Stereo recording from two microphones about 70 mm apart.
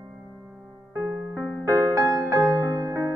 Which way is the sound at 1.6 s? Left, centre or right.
Right.